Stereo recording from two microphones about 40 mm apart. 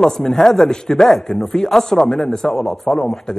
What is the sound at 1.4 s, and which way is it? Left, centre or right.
A man's voice, centre.